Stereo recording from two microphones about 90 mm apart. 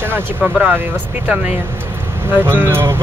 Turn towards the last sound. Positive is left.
turn(degrees=-25)  # may be behind; listen again after turning